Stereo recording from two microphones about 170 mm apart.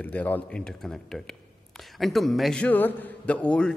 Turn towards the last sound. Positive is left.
turn(degrees=5)  # may be behind; listen again after turning